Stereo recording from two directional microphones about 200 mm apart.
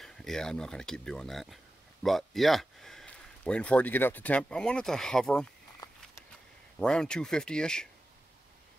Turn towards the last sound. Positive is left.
turn(degrees=5)  # may be behind; listen again after turning